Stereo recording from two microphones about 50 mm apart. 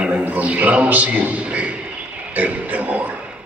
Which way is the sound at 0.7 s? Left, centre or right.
Right.